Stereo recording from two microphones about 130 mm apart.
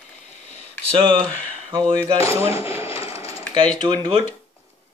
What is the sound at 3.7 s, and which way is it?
Speech, 40° right (ahead or behind).